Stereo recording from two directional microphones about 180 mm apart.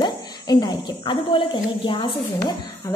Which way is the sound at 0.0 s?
25° left (ahead or behind).